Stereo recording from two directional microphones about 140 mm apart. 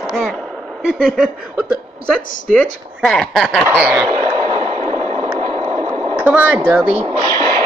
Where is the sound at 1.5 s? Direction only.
10° right (ahead or behind).